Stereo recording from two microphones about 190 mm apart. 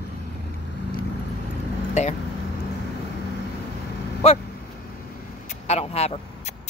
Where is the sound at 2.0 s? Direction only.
35° left (ahead or behind).